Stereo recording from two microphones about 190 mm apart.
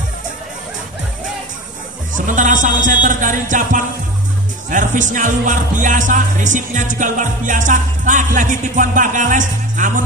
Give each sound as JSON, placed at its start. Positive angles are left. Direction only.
{"t": 2.1, "sound": "speech", "side_deg": -45}